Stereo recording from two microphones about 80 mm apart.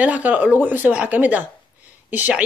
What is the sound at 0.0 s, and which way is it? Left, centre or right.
Speech, centre.